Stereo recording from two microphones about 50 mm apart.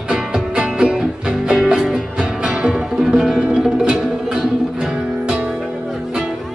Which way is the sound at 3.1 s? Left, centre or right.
Centre.